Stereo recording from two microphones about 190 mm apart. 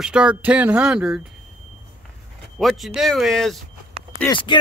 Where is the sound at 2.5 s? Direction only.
Centre (ahead or behind).